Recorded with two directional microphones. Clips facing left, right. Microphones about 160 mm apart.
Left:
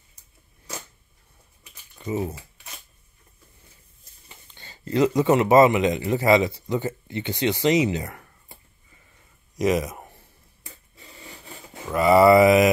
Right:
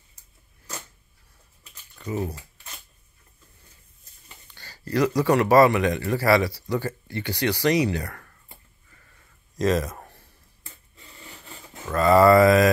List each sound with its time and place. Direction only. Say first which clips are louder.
2.0 s speech: left 2 dB; 20° left (ahead or behind)
4.5 s speech: left 1 dB; 20° left (ahead or behind)
9.6 s a sound: left 1 dB; 15° left (ahead or behind)